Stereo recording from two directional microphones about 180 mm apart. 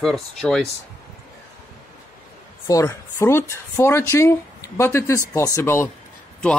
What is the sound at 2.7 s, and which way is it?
Speech, 15° left (ahead or behind).